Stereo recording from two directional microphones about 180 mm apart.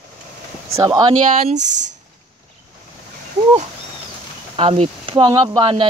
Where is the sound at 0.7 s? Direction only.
25° right (ahead or behind).